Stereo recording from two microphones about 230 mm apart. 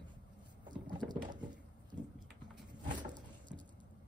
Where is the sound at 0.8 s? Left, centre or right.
Centre.